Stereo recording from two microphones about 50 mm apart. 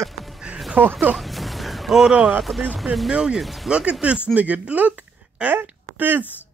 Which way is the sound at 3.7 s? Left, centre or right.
Right.